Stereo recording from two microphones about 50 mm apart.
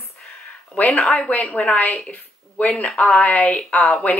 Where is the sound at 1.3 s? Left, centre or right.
Left.